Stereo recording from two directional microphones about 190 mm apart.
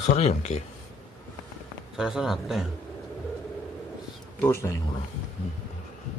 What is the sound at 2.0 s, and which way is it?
Speech, 5° right (ahead or behind).